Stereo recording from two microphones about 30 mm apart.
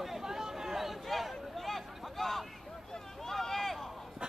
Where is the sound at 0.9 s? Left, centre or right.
Centre.